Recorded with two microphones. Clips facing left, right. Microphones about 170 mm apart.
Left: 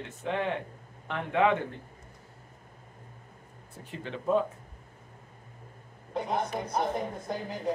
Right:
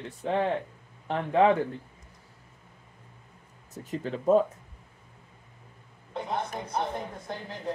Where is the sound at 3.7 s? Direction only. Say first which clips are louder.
Right 6 dB; 40° right (ahead or behind).